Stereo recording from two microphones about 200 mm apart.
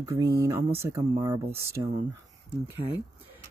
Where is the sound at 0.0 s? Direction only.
15° right (ahead or behind).